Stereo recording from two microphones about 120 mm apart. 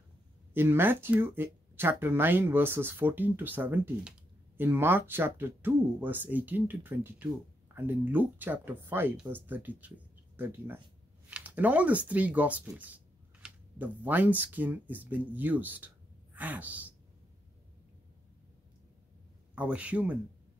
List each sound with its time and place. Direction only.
0.6 s speech: 20° right (ahead or behind)
19.5 s speech: 10° right (ahead or behind)